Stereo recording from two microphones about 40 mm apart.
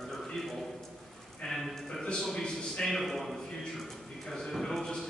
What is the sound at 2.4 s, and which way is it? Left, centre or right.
Speech, centre.